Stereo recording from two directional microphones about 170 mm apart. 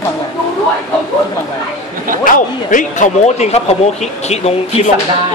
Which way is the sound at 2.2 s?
50° left (ahead or behind).